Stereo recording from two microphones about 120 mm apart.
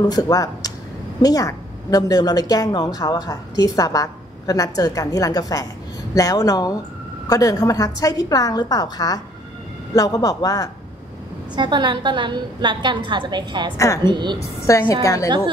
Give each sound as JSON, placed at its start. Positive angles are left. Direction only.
{"t": 0.0, "sound": "a woman's voice", "side_deg": 30}
{"t": 11.5, "sound": "a woman's voice", "side_deg": -40}
{"t": 14.7, "sound": "speech", "side_deg": 25}
{"t": 15.2, "sound": "a woman's voice", "side_deg": -40}